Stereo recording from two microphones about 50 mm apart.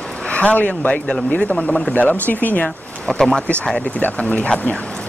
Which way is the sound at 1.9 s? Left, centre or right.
Left.